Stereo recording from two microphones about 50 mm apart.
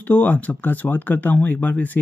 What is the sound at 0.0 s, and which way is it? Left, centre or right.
Speech, left.